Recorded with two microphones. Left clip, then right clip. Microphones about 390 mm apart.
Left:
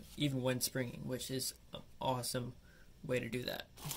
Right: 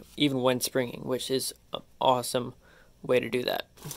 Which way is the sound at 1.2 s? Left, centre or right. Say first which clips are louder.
Right 12 dB; centre.